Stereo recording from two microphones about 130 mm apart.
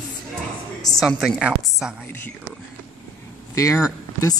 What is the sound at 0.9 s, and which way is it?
Speech, centre (ahead or behind).